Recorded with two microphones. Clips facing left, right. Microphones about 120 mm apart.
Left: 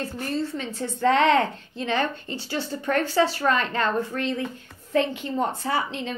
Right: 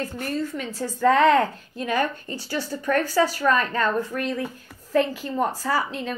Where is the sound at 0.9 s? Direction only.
25° left (ahead or behind).